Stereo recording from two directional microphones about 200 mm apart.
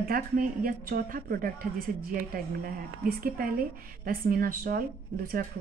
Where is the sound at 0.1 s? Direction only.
45° right (ahead or behind).